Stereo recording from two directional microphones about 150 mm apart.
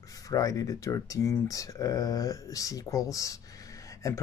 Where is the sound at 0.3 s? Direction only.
25° left (ahead or behind).